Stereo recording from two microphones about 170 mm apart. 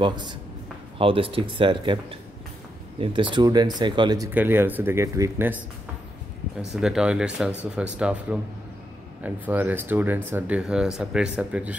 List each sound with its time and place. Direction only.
0.0 s speech: 25° right (ahead or behind)
4.3 s speech: 10° right (ahead or behind)
6.7 s speech: 5° right (ahead or behind)